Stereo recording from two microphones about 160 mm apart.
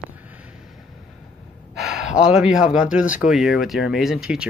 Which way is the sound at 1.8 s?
5° right (ahead or behind).